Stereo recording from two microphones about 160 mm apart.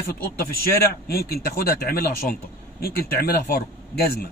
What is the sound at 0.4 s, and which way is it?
A man's voice, 75° left (ahead or behind).